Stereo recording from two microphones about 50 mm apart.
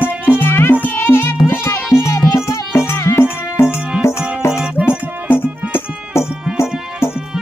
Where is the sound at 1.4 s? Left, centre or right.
Left.